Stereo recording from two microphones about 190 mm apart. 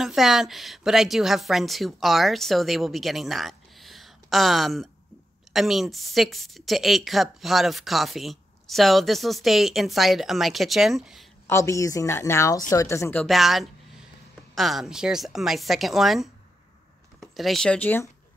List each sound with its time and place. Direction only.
0.0 s a woman's voice: centre (ahead or behind)
11.4 s a woman's voice: 15° left (ahead or behind)